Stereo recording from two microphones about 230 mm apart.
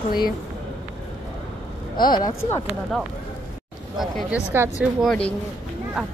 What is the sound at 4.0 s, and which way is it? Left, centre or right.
Speech, centre.